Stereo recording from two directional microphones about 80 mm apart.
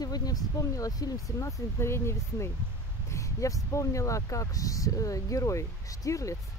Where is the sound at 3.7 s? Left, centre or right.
Left.